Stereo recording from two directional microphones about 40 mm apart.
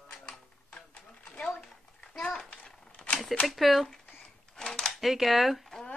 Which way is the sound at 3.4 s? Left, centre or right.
Centre.